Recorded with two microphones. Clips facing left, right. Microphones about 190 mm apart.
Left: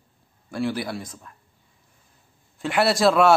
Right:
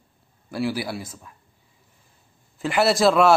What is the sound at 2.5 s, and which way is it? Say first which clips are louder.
Speech: right 1 dB; centre (ahead or behind).